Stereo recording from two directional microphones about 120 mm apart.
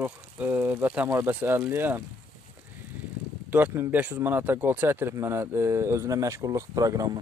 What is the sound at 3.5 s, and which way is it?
A man's voice, 15° right (ahead or behind).